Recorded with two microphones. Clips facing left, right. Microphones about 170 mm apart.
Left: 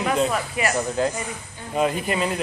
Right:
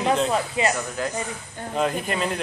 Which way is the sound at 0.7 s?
25° left (ahead or behind).